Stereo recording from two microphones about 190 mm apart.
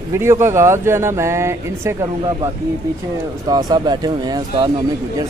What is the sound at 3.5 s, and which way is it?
Speech, 20° right (ahead or behind).